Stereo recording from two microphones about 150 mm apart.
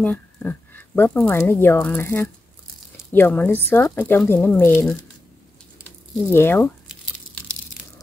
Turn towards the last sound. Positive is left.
turn(degrees=15)  # may be behind; listen again after turning